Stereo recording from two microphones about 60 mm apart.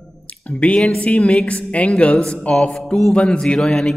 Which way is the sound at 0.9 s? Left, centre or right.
Left.